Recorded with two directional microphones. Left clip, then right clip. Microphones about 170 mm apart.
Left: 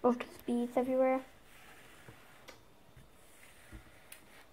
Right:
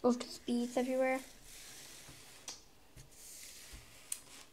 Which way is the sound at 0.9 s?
35° left (ahead or behind).